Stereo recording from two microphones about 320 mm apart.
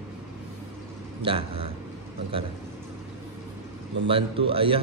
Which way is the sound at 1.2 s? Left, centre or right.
Centre.